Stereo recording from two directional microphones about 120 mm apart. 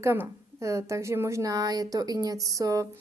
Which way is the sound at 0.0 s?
20° right (ahead or behind).